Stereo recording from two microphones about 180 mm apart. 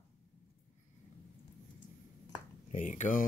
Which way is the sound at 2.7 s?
45° left (ahead or behind).